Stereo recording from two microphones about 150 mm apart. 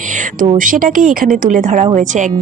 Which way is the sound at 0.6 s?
65° right (ahead or behind).